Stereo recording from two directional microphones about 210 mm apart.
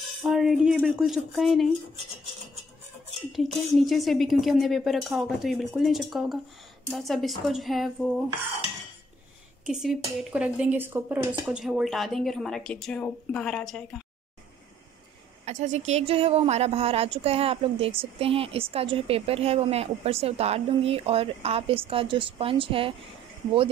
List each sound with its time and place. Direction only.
0.2 s speech: centre (ahead or behind)
3.2 s speech: centre (ahead or behind)
9.7 s speech: centre (ahead or behind)
15.4 s a woman's voice: 35° right (ahead or behind)